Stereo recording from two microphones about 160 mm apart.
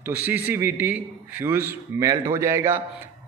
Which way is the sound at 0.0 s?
10° right (ahead or behind).